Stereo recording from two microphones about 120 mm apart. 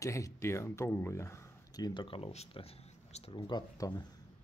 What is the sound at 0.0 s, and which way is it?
Speech, 25° left (ahead or behind).